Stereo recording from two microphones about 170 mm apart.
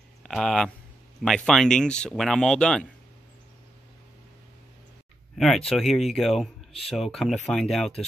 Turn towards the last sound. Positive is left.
turn(degrees=0)  # may be behind; listen again after turning